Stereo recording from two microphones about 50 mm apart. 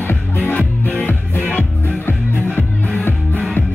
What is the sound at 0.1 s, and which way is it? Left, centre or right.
Music, left.